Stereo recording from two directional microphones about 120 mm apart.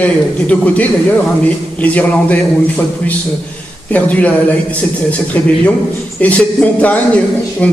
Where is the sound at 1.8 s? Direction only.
10° left (ahead or behind).